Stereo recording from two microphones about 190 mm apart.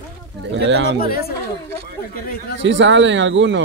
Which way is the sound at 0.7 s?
70° right (ahead or behind).